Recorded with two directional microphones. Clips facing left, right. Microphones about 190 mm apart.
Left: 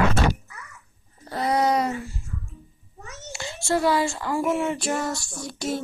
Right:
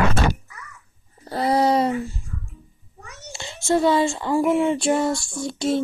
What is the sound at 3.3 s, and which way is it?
A child's voice, 25° right (ahead or behind).